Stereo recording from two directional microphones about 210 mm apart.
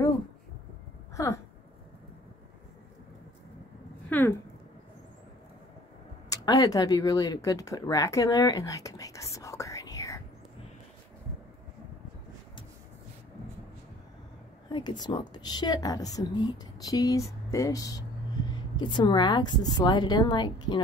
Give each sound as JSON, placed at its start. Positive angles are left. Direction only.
{"t": 1.1, "sound": "a sound", "side_deg": 15}
{"t": 4.1, "sound": "speech", "side_deg": 10}
{"t": 6.3, "sound": "speech", "side_deg": 20}
{"t": 14.7, "sound": "a woman's voice", "side_deg": 20}